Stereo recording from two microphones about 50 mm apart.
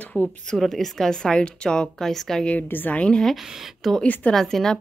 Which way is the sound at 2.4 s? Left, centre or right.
Left.